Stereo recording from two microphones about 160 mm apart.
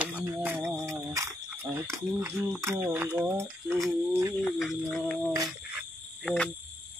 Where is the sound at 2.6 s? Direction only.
15° right (ahead or behind).